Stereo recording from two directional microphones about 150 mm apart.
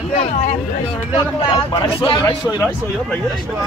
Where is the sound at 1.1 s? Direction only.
35° left (ahead or behind).